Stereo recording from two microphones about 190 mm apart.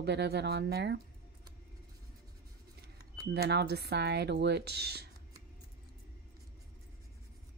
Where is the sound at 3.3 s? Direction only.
60° right (ahead or behind).